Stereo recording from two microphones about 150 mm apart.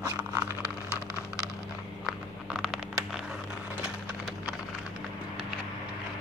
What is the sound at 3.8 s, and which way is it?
Wood, 5° right (ahead or behind).